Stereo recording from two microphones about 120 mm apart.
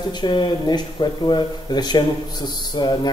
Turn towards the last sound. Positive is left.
turn(degrees=35)  # may be behind; listen again after turning